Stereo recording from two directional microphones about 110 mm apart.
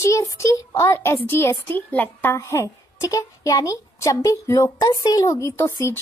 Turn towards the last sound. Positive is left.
turn(degrees=25)  # may be behind; listen again after turning